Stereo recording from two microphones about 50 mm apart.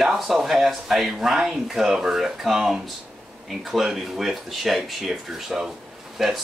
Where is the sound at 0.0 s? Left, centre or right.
Centre.